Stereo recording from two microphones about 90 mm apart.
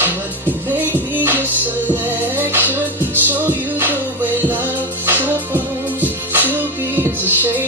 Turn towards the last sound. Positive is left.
turn(degrees=-20)  # may be behind; listen again after turning